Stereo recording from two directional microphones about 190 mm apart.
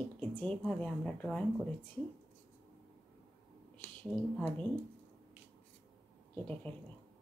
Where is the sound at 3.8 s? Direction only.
10° left (ahead or behind).